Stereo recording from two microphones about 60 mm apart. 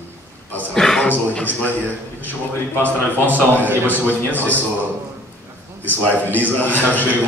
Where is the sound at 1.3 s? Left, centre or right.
Left.